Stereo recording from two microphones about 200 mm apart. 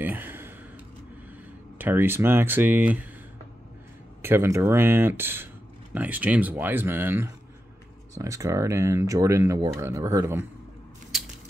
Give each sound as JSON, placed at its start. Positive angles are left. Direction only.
{"t": 0.0, "sound": "a sound", "side_deg": -10}
{"t": 1.8, "sound": "speech", "side_deg": -10}
{"t": 4.2, "sound": "speech", "side_deg": -10}